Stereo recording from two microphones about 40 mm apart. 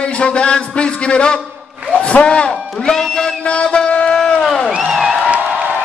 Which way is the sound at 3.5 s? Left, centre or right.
Left.